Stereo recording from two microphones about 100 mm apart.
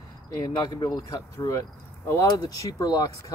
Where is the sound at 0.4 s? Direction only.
35° left (ahead or behind).